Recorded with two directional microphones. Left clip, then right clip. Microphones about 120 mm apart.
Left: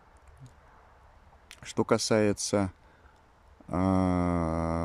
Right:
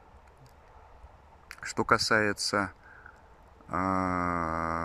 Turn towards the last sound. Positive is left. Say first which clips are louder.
# right 1 dB
turn(degrees=30)  # may be behind; listen again after turning